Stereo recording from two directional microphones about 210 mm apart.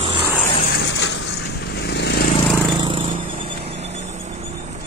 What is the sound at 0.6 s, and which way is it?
Vehicle, 50° left (ahead or behind).